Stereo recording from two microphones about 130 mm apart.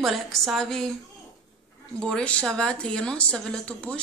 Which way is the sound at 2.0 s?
10° left (ahead or behind).